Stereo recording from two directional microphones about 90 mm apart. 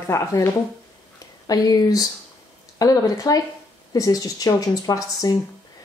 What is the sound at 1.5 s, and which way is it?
Speech, 45° left (ahead or behind).